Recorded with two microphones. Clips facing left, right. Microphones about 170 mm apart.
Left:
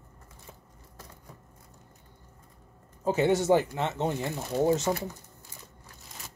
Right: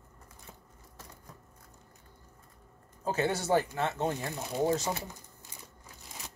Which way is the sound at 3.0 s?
20° left (ahead or behind).